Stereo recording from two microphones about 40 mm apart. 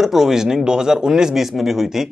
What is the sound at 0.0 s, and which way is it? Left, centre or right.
Speech, centre.